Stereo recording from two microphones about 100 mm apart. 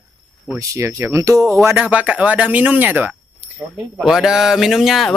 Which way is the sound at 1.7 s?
15° right (ahead or behind).